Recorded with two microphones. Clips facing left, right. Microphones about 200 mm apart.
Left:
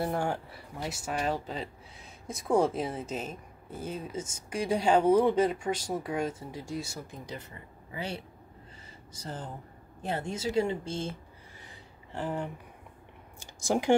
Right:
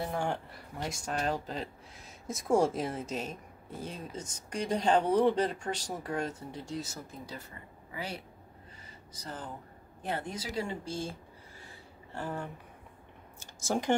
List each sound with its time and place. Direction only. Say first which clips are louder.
0.1 s speech: left 2 dB; 10° left (ahead or behind)
7.9 s a woman's voice: left 3 dB; 25° left (ahead or behind)
11.6 s a sound: even; 15° left (ahead or behind)